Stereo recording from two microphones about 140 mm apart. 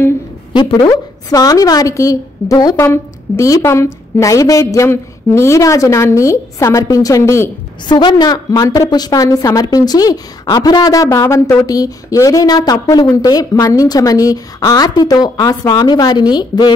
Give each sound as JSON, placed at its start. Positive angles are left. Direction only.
{"t": 0.5, "sound": "a woman's voice", "side_deg": 35}
{"t": 7.9, "sound": "a woman's voice", "side_deg": 35}